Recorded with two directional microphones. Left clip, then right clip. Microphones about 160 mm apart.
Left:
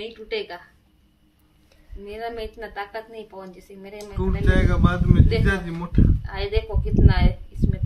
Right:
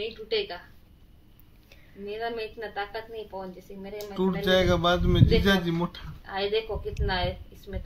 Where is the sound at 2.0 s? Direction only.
5° left (ahead or behind).